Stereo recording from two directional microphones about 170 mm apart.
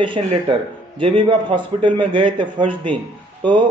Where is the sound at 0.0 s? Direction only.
30° right (ahead or behind).